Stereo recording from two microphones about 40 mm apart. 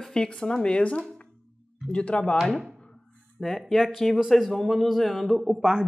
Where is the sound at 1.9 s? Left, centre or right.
Left.